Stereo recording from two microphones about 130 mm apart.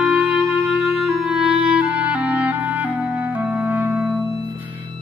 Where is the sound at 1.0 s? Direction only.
5° right (ahead or behind).